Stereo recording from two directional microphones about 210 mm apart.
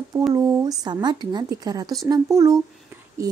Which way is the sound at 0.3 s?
15° right (ahead or behind).